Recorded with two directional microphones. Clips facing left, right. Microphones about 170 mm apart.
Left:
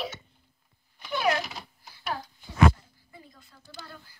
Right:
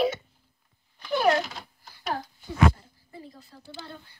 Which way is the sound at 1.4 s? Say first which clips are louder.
Right 1 dB; centre (ahead or behind).